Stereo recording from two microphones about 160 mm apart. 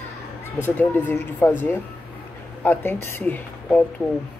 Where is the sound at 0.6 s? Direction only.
10° left (ahead or behind).